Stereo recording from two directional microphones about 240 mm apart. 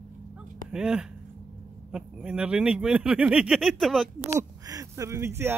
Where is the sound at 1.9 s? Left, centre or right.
Centre.